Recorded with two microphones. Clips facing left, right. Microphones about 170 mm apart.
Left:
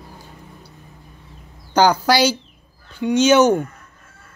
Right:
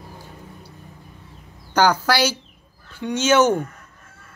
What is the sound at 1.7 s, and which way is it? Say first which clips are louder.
Speech: left 3 dB; 15° left (ahead or behind).